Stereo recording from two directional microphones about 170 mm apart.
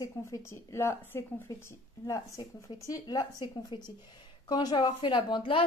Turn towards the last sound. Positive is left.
turn(degrees=30)  # may be behind; listen again after turning